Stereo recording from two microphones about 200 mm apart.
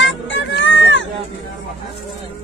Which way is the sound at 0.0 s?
65° left (ahead or behind).